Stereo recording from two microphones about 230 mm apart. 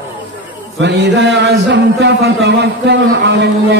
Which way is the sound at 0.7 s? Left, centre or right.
Right.